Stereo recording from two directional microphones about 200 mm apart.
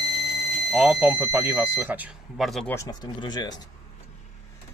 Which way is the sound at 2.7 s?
20° left (ahead or behind).